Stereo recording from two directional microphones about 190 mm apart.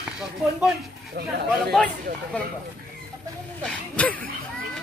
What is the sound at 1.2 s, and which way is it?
Speech, 60° right (ahead or behind).